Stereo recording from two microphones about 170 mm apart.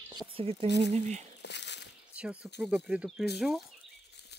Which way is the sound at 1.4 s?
90° left.